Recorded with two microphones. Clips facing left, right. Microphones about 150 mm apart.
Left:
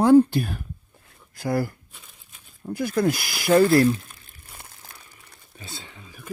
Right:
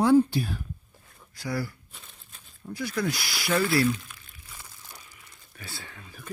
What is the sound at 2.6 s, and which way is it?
Speech, 50° left (ahead or behind).